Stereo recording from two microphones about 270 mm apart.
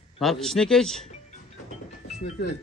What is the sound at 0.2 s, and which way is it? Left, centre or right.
Speech, centre.